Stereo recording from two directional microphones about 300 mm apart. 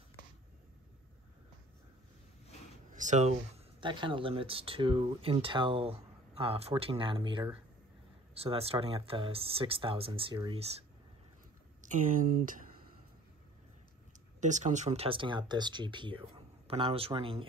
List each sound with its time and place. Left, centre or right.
2.9 s speech: right
11.8 s speech: right
14.4 s speech: right